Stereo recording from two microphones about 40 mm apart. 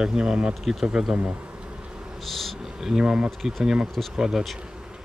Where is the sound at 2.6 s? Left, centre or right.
Centre.